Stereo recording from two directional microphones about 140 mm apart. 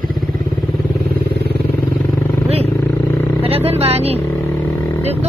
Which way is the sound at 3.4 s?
45° right (ahead or behind).